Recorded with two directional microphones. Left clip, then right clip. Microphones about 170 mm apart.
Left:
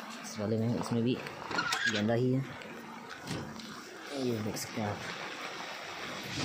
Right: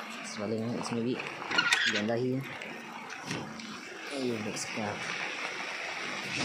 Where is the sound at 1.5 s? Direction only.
55° left (ahead or behind).